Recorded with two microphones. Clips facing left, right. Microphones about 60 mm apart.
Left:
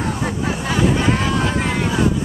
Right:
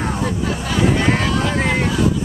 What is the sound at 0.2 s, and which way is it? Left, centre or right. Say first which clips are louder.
Speech: even; left.